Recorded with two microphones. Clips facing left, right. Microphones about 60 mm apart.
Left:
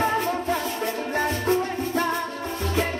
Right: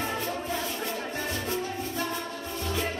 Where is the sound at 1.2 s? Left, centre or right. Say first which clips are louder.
Left 11 dB; left.